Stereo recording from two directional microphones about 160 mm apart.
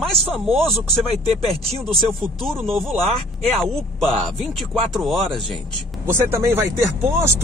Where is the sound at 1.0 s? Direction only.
40° right (ahead or behind).